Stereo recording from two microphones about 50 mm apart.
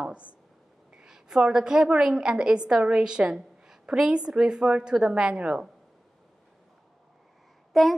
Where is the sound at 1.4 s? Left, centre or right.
Centre.